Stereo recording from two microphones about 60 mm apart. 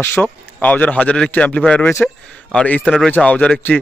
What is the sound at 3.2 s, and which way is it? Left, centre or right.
Speech, centre.